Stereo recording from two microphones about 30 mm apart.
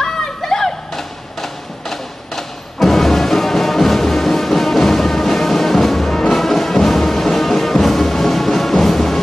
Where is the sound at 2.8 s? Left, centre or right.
Centre.